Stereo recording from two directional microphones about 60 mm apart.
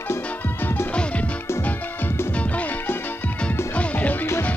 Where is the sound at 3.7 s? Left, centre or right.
Left.